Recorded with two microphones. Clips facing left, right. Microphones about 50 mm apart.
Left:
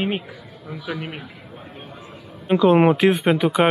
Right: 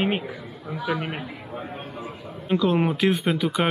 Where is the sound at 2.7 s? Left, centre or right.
Left.